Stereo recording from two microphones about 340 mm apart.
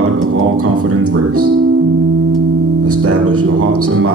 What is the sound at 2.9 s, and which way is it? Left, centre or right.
Speech, right.